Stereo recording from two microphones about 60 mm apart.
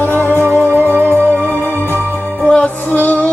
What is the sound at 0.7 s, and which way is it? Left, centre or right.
Music, right.